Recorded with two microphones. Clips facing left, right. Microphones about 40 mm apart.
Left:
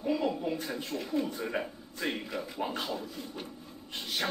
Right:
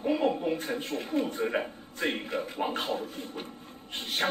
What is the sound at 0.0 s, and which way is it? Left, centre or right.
A man's voice, right.